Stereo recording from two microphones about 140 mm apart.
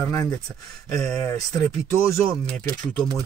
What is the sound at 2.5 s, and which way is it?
Speech, 10° left (ahead or behind).